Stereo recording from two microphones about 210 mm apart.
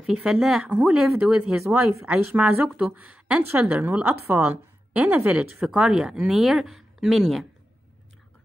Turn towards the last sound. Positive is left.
turn(degrees=0)  # may be behind; listen again after turning